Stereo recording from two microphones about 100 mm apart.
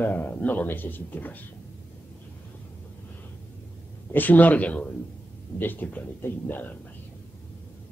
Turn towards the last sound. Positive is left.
turn(degrees=20)  # may be behind; listen again after turning